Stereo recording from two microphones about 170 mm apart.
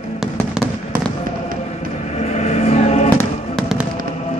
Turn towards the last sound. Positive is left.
turn(degrees=40)  # may be behind; listen again after turning